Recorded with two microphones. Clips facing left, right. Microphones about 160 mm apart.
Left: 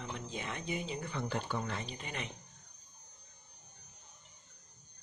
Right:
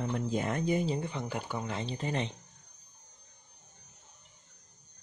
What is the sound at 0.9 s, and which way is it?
Speech, 20° right (ahead or behind).